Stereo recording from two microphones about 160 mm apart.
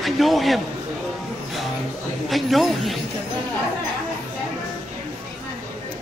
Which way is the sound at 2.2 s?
Centre (ahead or behind).